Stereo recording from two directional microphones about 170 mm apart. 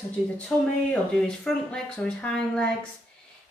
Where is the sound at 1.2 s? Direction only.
5° left (ahead or behind).